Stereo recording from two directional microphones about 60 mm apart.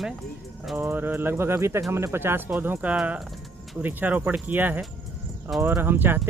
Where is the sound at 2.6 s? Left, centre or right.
Right.